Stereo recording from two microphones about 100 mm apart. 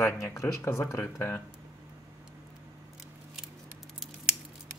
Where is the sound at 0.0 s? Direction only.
30° left (ahead or behind).